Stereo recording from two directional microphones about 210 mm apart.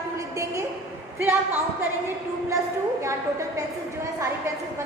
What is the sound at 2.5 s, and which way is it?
A woman's voice, 15° right (ahead or behind).